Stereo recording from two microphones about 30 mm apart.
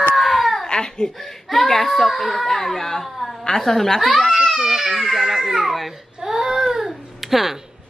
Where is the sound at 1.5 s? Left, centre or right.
Centre.